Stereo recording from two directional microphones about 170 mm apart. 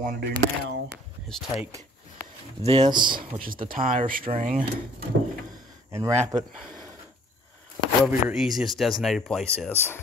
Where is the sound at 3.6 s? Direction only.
55° right (ahead or behind).